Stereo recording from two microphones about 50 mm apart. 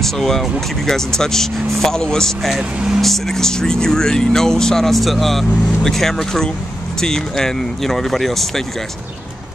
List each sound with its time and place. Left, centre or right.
0.0 s speech: centre